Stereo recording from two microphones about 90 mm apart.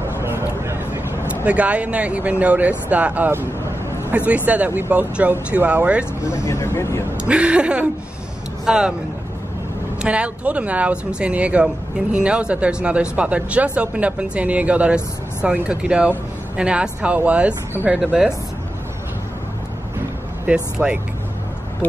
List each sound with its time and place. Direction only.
0.2 s vehicle: 30° right (ahead or behind)
1.3 s speech: 15° right (ahead or behind)
6.2 s speech: 30° left (ahead or behind)
7.2 s speech: 10° right (ahead or behind)
10.0 s speech: 15° right (ahead or behind)
20.4 s speech: 10° right (ahead or behind)